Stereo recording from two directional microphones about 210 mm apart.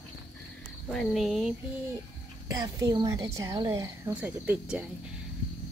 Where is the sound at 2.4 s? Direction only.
15° right (ahead or behind).